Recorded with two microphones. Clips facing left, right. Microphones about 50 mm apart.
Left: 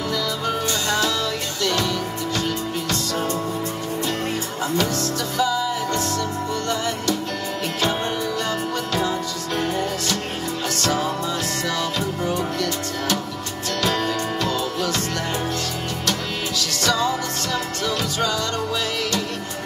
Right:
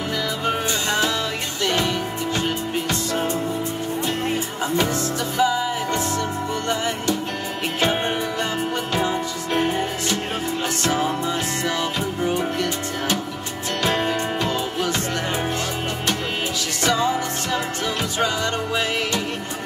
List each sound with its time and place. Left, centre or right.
0.5 s music: right
4.3 s music: right
8.9 s music: right
16.1 s music: right